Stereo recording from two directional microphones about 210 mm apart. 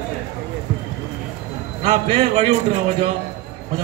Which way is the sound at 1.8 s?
30° right (ahead or behind).